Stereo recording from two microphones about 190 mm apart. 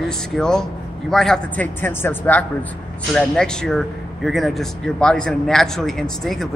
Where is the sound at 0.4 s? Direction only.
5° left (ahead or behind).